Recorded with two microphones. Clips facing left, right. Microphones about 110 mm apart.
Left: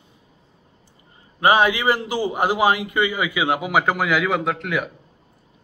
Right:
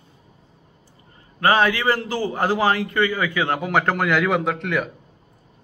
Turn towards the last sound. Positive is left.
turn(degrees=0)  # may be behind; listen again after turning